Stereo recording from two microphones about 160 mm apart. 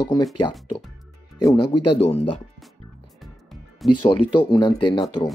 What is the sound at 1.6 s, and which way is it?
Speech, 30° left (ahead or behind).